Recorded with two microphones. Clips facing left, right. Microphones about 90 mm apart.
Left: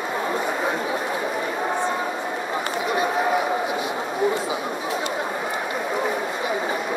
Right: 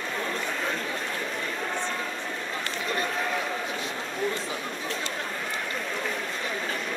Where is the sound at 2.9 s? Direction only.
15° left (ahead or behind).